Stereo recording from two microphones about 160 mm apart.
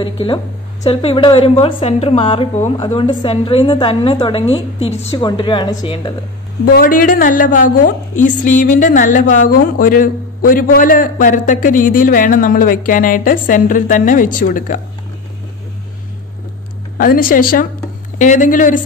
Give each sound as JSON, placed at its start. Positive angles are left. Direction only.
{"t": 0.0, "sound": "a woman's voice", "side_deg": 30}
{"t": 6.6, "sound": "a woman's voice", "side_deg": 65}
{"t": 17.0, "sound": "a woman's voice", "side_deg": 60}